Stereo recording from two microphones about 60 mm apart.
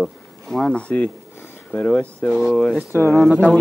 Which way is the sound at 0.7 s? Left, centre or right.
Centre.